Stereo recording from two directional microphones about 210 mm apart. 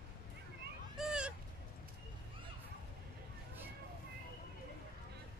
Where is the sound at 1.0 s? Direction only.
5° right (ahead or behind).